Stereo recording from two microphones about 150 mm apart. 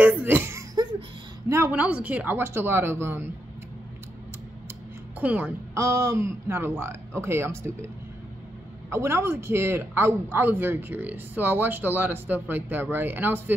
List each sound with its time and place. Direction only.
0.0 s a sound: 15° right (ahead or behind)
1.5 s speech: 15° right (ahead or behind)
5.2 s speech: 10° right (ahead or behind)
8.9 s speech: 15° right (ahead or behind)